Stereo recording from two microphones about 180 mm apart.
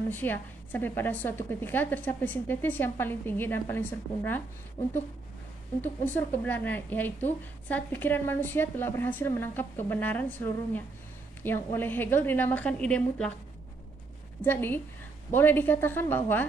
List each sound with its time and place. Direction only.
0.1 s a woman's voice: 10° left (ahead or behind)
14.4 s a woman's voice: 10° left (ahead or behind)